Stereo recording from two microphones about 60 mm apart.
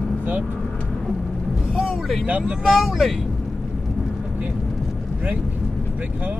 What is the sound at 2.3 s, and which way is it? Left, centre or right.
Speech, right.